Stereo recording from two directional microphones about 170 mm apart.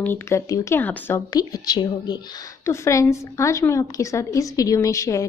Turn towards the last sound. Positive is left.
turn(degrees=20)  # may be behind; listen again after turning